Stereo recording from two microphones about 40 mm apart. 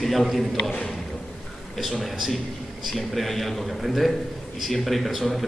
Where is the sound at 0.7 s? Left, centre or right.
Centre.